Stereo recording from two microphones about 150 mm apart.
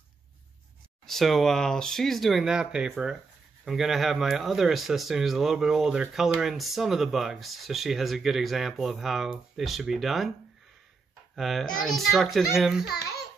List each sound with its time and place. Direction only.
1.0 s speech: centre (ahead or behind)
11.3 s speech: centre (ahead or behind)
12.8 s a child's voice: 90° left